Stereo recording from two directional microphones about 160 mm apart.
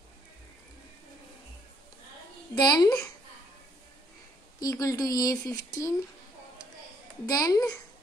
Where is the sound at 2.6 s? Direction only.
25° left (ahead or behind).